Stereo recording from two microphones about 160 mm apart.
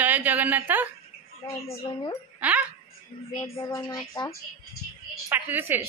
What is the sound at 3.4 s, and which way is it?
Speech, 20° left (ahead or behind).